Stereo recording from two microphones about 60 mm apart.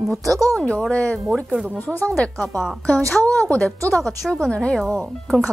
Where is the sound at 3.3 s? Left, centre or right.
Left.